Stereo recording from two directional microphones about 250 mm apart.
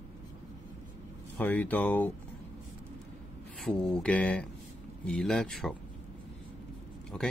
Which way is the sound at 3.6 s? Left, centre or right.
Centre.